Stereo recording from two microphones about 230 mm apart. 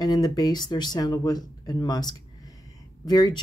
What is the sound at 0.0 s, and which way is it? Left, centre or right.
A woman's voice, centre.